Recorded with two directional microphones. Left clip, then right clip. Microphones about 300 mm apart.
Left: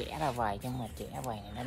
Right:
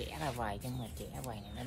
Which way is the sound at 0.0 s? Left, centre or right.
Left.